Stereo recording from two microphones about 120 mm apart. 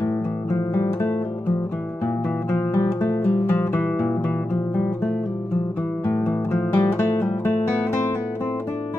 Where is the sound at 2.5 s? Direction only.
20° left (ahead or behind).